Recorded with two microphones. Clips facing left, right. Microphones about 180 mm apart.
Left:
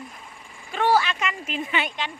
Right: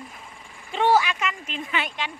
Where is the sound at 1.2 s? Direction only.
Centre (ahead or behind).